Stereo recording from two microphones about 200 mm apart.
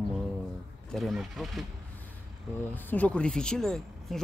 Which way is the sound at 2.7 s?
10° left (ahead or behind).